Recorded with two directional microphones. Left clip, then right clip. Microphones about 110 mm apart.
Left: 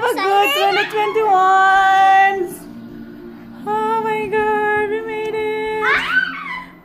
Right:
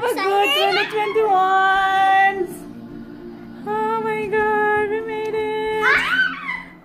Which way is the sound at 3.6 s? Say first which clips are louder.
Left 3 dB; 15° left (ahead or behind).